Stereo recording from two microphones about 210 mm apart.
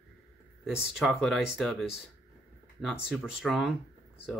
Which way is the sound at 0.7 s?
5° right (ahead or behind).